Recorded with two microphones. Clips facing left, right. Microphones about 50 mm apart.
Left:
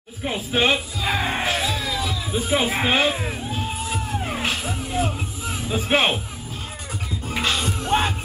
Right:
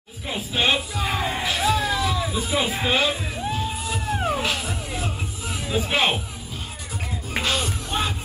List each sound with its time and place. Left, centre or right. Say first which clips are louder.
0.5 s music: left 2 dB; left
1.6 s music: right 4 dB; right
2.0 s a sound: right 4 dB; right
2.3 s speech: left 3 dB; left
4.3 s music: right 1 dB; left
7.6 s music: left 5 dB; left